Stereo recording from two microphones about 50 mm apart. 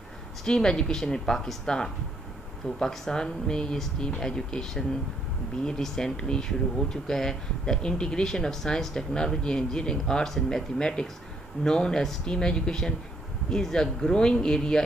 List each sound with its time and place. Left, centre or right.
0.5 s speech: centre